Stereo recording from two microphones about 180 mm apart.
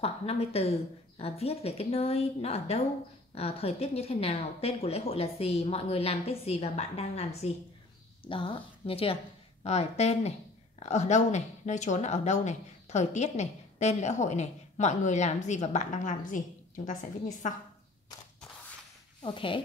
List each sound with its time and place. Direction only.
0.0 s a woman's voice: 35° left (ahead or behind)
19.2 s speech: 30° left (ahead or behind)